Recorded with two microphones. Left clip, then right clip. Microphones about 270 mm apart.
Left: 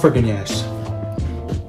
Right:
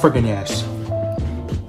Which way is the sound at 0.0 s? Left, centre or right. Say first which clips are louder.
Even; centre.